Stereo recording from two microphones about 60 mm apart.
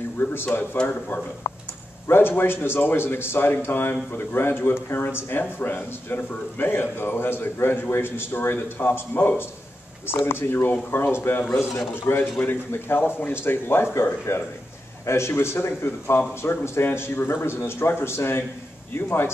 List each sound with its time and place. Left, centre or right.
0.2 s speech: left